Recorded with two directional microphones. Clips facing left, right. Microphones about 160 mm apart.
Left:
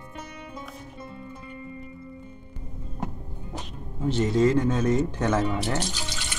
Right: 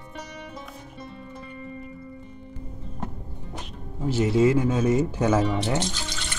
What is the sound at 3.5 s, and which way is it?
Speech, 5° right (ahead or behind).